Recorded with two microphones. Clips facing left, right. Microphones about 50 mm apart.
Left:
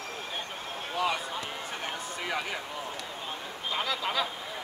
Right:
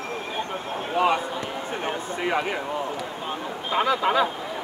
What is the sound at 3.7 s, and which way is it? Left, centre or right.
Speech, right.